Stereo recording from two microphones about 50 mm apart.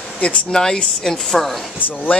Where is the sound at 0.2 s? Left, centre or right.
Left.